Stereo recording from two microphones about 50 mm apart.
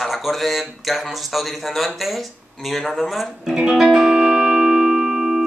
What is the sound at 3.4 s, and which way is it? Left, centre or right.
Music, centre.